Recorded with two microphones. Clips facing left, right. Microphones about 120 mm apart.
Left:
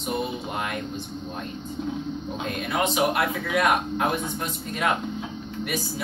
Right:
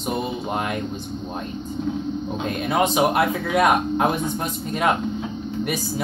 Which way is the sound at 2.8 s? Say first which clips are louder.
Right 4 dB; 40° right (ahead or behind).